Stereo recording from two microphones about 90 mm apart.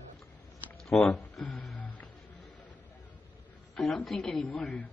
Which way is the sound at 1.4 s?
Centre (ahead or behind).